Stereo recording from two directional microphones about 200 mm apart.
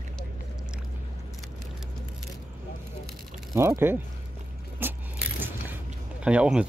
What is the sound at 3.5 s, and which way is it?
Speech, 10° right (ahead or behind).